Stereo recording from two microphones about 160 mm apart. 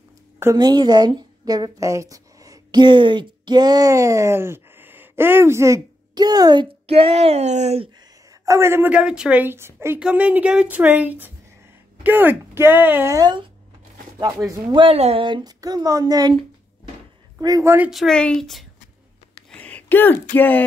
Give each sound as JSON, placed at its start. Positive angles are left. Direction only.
{"t": 0.4, "sound": "a woman's voice", "side_deg": -20}
{"t": 8.3, "sound": "a woman's voice", "side_deg": -20}
{"t": 14.5, "sound": "speech", "side_deg": -30}
{"t": 17.4, "sound": "speech", "side_deg": -20}
{"t": 17.8, "sound": "speech", "side_deg": 0}
{"t": 19.5, "sound": "a sound", "side_deg": 10}
{"t": 20.3, "sound": "speech", "side_deg": 10}